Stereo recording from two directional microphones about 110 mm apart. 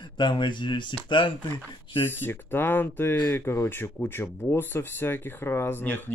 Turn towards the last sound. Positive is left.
turn(degrees=20)  # may be behind; listen again after turning